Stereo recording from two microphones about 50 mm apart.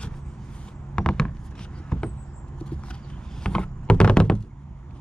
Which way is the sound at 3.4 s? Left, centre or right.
Centre.